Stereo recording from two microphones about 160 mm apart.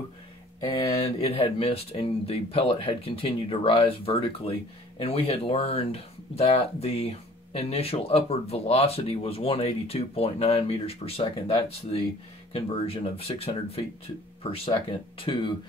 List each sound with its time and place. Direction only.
0.7 s speech: 20° left (ahead or behind)
1.0 s speech: 40° left (ahead or behind)
12.5 s speech: 35° left (ahead or behind)